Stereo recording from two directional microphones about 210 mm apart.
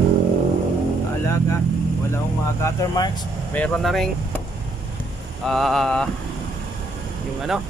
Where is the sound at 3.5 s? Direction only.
5° left (ahead or behind).